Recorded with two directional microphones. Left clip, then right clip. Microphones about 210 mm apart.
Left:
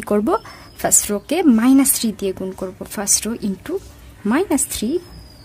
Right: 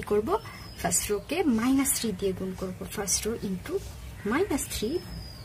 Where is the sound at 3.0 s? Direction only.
50° left (ahead or behind).